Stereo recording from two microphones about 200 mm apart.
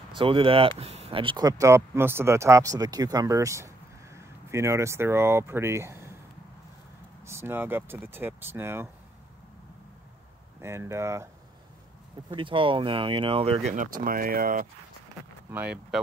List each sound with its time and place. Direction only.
0.1 s speech: 25° right (ahead or behind)
7.2 s speech: 10° right (ahead or behind)
10.6 s speech: 15° right (ahead or behind)
12.3 s speech: 25° right (ahead or behind)
14.0 s speech: 45° right (ahead or behind)
15.5 s speech: 5° right (ahead or behind)